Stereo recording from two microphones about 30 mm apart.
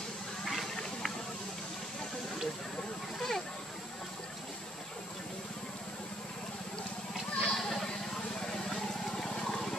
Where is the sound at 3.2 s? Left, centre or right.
Centre.